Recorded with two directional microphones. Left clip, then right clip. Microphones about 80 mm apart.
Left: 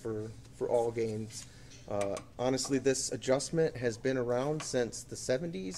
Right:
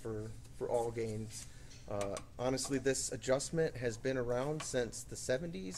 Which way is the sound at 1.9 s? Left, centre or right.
Centre.